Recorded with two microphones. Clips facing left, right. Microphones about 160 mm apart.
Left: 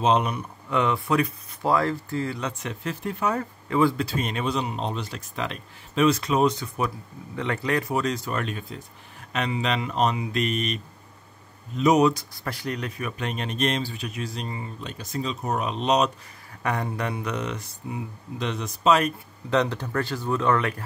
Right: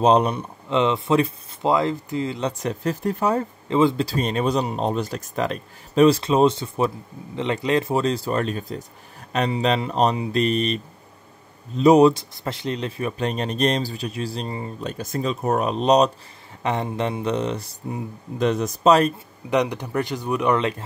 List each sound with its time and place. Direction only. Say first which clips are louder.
0.0 s speech: right 5 dB; 35° right (ahead or behind); by 2.4 s 20° right (ahead or behind)
2.4 s speech: right 6 dB; 40° right (ahead or behind)
16.6 s speech: right 4 dB; 25° right (ahead or behind)
19.5 s speech: right 2 dB; 15° right (ahead or behind)